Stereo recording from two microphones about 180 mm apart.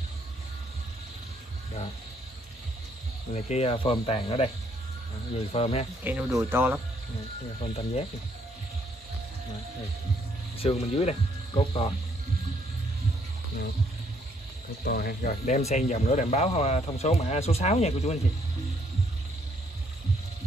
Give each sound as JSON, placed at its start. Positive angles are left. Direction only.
{"t": 3.3, "sound": "speech", "side_deg": 35}
{"t": 5.5, "sound": "speech", "side_deg": 35}
{"t": 6.0, "sound": "speech", "side_deg": -10}
{"t": 7.6, "sound": "speech", "side_deg": 35}
{"t": 10.6, "sound": "speech", "side_deg": 35}
{"t": 14.9, "sound": "speech", "side_deg": 55}